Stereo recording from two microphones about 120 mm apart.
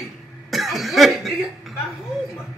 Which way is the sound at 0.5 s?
Centre (ahead or behind).